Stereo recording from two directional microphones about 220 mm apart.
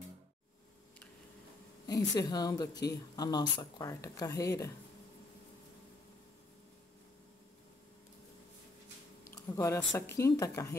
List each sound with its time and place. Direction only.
2.1 s speech: 15° left (ahead or behind)
9.3 s a sound: 15° left (ahead or behind)
9.9 s speech: 15° left (ahead or behind)